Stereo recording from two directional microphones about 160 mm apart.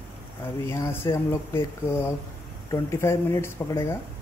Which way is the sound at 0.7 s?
15° left (ahead or behind).